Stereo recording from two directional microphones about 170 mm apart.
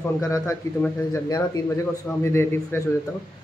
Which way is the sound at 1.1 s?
20° left (ahead or behind).